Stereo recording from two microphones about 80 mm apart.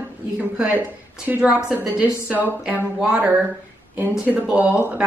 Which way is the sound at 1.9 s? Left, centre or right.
Centre.